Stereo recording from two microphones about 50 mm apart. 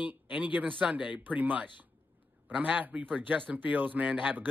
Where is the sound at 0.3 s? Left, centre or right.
Right.